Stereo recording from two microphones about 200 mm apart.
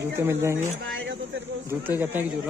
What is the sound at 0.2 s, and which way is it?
Speech, 15° right (ahead or behind).